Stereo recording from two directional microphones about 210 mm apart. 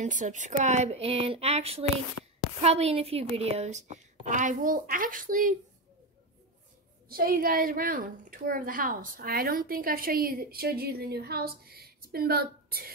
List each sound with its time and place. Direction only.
0.0 s a woman's voice: 35° right (ahead or behind)
7.1 s a woman's voice: 45° right (ahead or behind)